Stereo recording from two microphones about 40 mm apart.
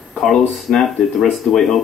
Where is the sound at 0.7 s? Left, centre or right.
Centre.